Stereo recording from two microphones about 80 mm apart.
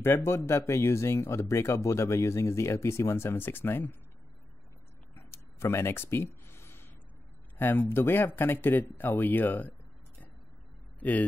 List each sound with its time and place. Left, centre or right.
0.0 s speech: left
5.1 s a sound: left
7.5 s speech: left
11.0 s speech: centre